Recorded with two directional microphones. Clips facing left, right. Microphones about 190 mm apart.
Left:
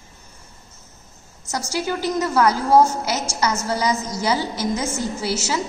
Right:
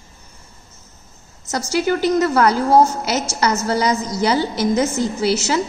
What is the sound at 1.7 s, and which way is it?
A woman's voice, 65° right (ahead or behind).